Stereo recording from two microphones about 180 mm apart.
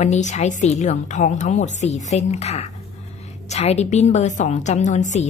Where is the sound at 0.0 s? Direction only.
40° left (ahead or behind).